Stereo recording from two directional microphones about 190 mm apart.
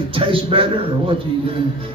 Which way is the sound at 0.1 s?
30° right (ahead or behind).